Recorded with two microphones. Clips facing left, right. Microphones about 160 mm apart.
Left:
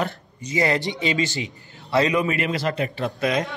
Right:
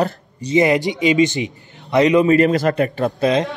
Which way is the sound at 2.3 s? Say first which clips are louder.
Right 10 dB; 45° right (ahead or behind).